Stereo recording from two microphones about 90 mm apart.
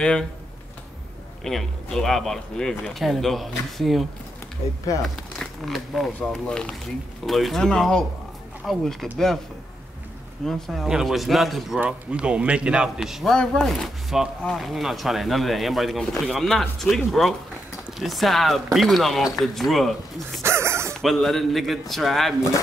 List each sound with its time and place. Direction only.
1.4 s speech: 5° left (ahead or behind)
5.0 s speech: centre (ahead or behind)
10.4 s speech: centre (ahead or behind)
11.8 s speech: 10° right (ahead or behind)
20.4 s a sound: 30° right (ahead or behind)
21.0 s speech: centre (ahead or behind)